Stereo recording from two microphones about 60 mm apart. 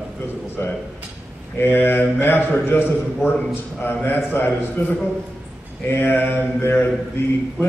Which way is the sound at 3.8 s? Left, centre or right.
Left.